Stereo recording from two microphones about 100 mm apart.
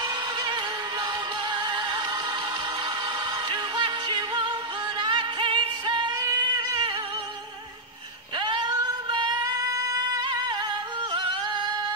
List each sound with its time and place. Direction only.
0.0 s music: 45° right (ahead or behind)
3.4 s music: 50° right (ahead or behind)
6.2 s a sound: 40° right (ahead or behind)
8.4 s singing: 50° right (ahead or behind)